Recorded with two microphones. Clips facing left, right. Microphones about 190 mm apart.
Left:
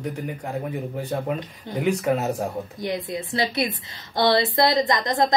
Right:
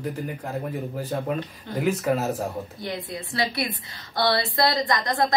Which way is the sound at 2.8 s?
20° left (ahead or behind).